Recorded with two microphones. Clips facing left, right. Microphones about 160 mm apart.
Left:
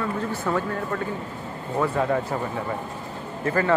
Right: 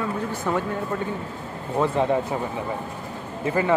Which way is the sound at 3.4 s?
15° right (ahead or behind).